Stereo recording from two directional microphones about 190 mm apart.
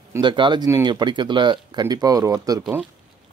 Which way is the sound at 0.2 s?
25° right (ahead or behind).